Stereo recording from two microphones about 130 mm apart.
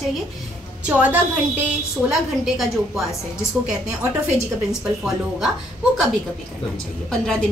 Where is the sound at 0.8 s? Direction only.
10° right (ahead or behind).